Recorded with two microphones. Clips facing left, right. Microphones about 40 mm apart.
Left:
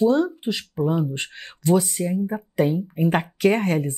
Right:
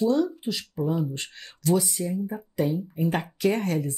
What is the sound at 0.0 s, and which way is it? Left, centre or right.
Speech, left.